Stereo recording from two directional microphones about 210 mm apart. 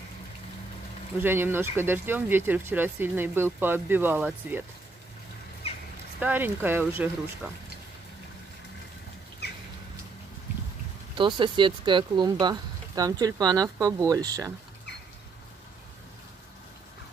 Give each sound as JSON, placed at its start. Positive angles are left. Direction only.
{"t": 1.2, "sound": "speech", "side_deg": -10}
{"t": 5.6, "sound": "crow", "side_deg": 30}
{"t": 6.1, "sound": "speech", "side_deg": -10}
{"t": 11.1, "sound": "speech", "side_deg": -20}